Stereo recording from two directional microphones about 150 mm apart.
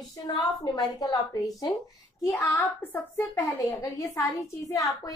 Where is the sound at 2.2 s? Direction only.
10° left (ahead or behind).